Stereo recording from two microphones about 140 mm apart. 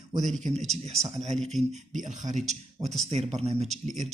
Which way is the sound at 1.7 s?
55° right (ahead or behind).